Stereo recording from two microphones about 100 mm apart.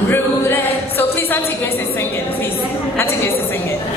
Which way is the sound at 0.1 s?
20° left (ahead or behind).